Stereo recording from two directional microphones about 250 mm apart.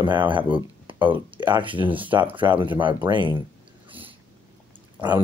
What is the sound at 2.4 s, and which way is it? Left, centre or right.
Speech, centre.